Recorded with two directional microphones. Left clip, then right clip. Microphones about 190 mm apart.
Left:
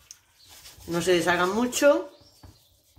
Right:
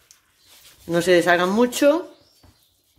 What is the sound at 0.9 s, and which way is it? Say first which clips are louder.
Speech: right 6 dB; 45° right (ahead or behind).